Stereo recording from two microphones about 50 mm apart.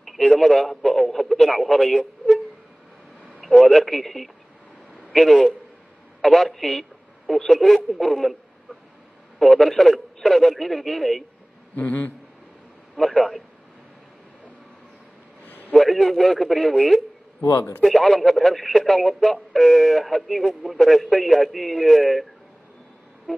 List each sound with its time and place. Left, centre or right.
0.0 s speech: centre
3.3 s speech: centre
9.4 s speech: centre
11.7 s a man's voice: left
12.9 s speech: centre
15.4 s a sound: left
15.7 s speech: centre